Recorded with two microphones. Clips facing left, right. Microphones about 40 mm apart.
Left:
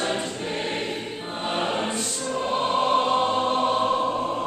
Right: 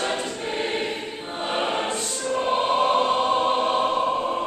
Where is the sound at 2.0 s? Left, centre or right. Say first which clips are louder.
Right 2 dB; centre.